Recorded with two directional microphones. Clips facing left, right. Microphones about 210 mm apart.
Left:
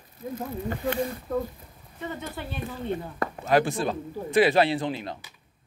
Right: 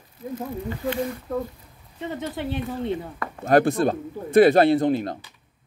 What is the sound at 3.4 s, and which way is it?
Speech, 55° right (ahead or behind).